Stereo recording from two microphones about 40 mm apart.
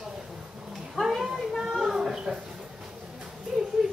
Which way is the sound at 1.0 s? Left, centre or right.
Left.